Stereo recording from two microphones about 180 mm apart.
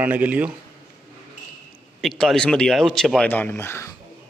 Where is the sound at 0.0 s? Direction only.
10° right (ahead or behind).